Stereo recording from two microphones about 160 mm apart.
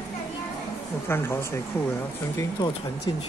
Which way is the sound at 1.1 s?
15° left (ahead or behind).